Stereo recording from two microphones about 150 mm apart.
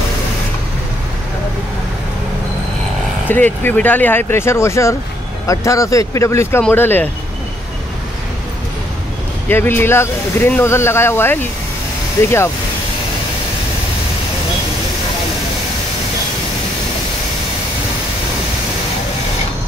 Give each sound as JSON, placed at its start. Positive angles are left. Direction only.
{"t": 3.3, "sound": "speech", "side_deg": 10}
{"t": 9.5, "sound": "speech", "side_deg": 15}